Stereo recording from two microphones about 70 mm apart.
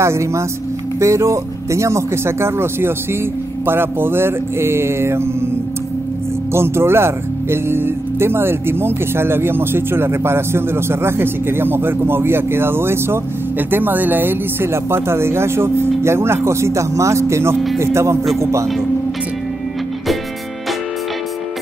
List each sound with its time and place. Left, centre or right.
0.0 s speech: right
6.5 s speech: right